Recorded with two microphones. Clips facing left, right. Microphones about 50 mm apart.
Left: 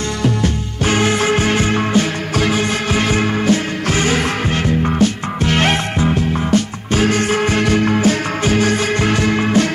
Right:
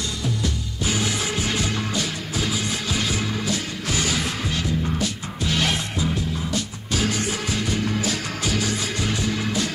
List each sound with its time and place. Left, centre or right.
0.2 s music: left